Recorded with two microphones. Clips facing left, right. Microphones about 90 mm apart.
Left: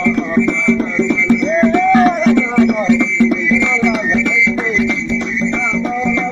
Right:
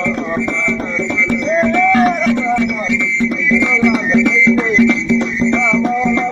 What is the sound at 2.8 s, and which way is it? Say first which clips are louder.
Music: left 5 dB; 50° left (ahead or behind).